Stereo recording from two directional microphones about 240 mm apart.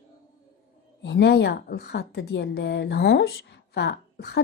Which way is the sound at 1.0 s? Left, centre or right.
Left.